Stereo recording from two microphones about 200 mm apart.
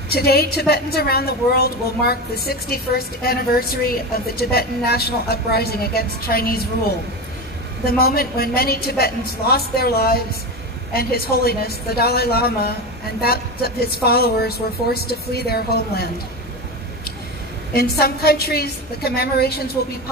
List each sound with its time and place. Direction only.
0.1 s a woman's voice: 50° left (ahead or behind)
7.8 s a woman's voice: 50° left (ahead or behind)
17.7 s a woman's voice: 50° left (ahead or behind)